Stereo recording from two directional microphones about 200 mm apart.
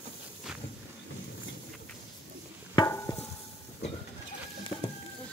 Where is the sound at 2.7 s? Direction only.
15° left (ahead or behind).